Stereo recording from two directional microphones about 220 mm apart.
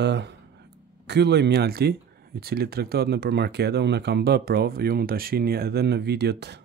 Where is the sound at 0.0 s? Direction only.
50° right (ahead or behind).